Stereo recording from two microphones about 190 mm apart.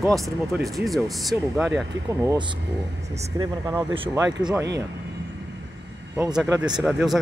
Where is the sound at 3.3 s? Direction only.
20° right (ahead or behind).